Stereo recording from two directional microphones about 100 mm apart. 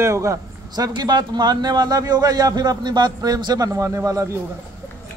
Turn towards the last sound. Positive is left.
turn(degrees=-30)  # may be behind; listen again after turning